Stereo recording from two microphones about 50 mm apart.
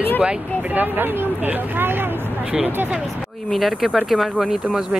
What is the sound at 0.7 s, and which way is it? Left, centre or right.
Speech, right.